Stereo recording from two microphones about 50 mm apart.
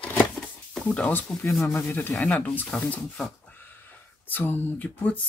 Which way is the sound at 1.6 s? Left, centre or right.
Left.